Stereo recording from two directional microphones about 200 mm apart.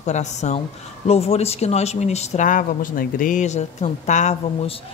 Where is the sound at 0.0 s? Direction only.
35° left (ahead or behind).